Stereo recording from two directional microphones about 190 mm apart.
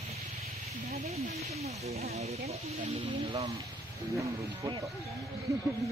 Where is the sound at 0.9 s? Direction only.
35° right (ahead or behind).